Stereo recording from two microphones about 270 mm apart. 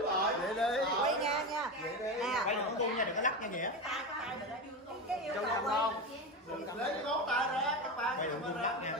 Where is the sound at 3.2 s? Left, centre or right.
Left.